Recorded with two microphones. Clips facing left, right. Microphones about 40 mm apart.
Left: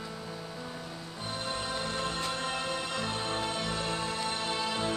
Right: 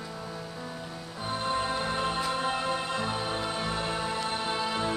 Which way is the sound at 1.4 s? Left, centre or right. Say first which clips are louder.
Right 6 dB; right.